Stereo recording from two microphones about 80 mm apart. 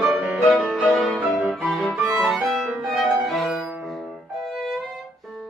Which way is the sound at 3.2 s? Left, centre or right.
Centre.